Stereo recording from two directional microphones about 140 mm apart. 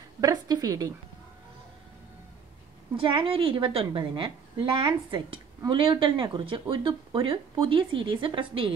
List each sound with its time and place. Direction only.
0.2 s a woman's voice: 25° right (ahead or behind)
3.0 s speech: 40° right (ahead or behind)